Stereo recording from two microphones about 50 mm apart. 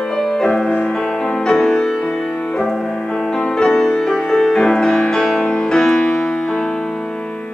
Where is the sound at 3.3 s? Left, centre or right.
Centre.